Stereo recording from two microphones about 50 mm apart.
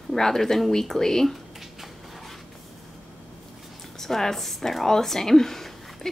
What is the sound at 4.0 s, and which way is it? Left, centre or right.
Speech, centre.